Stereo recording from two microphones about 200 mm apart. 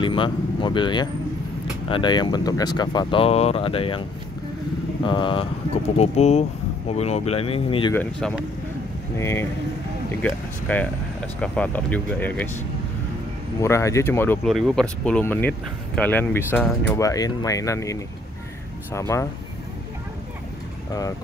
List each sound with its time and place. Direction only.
0.0 s speech: 25° left (ahead or behind)
5.0 s speech: 25° left (ahead or behind)
7.9 s speech: 10° left (ahead or behind)
13.6 s speech: 15° left (ahead or behind)
14.5 s speech: centre (ahead or behind)